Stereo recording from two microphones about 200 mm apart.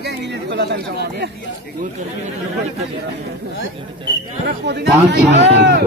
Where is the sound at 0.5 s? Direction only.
55° right (ahead or behind).